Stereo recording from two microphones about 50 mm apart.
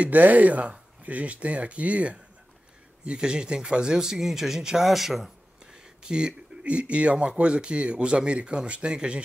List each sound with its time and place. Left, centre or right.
0.0 s speech: right; by 5.3 s centre
6.0 s speech: centre